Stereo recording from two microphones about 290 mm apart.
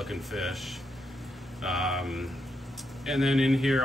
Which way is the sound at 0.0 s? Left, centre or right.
Centre.